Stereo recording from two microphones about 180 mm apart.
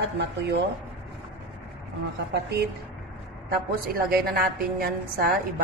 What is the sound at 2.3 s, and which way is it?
Speech, 65° right (ahead or behind).